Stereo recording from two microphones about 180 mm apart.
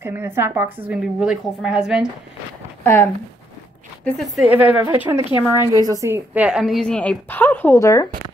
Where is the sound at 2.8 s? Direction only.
15° left (ahead or behind).